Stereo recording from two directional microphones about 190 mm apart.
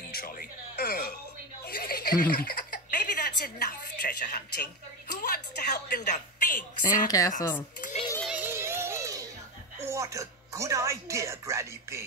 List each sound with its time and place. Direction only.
0.1 s music: 50° left (ahead or behind)
1.7 s a sound: 55° left (ahead or behind)
5.3 s a woman's voice: 60° left (ahead or behind)
6.0 s a woman's voice: 40° left (ahead or behind)
7.1 s speech: 20° left (ahead or behind)
8.2 s a sound: 5° right (ahead or behind)
9.8 s a woman's voice: 15° right (ahead or behind)